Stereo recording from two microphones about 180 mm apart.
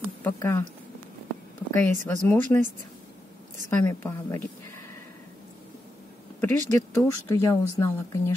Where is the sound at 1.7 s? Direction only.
10° left (ahead or behind).